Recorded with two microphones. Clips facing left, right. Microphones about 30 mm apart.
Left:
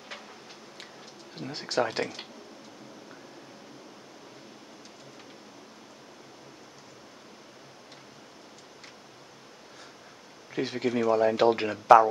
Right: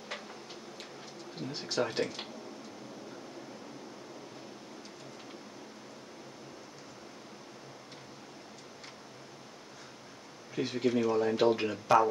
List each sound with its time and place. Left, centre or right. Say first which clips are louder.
1.5 s speech: left 5 dB; left
10.5 s speech: left 1 dB; left